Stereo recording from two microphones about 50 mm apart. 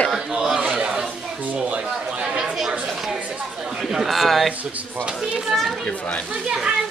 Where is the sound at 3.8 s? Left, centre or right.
Centre.